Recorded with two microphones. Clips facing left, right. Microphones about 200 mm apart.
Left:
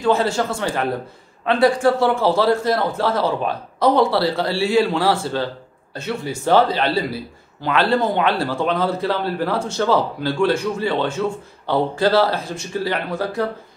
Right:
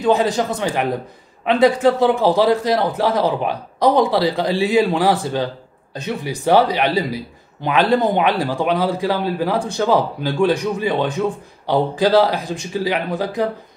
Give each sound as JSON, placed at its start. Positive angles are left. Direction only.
{"t": 0.0, "sound": "a man's voice", "side_deg": -15}